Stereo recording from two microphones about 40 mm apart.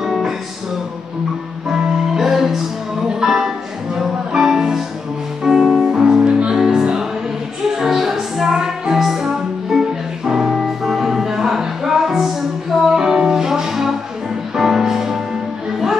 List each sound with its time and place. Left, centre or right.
0.0 s music: centre
1.7 s music: centre
4.4 s music: centre
7.7 s music: centre
10.5 s music: centre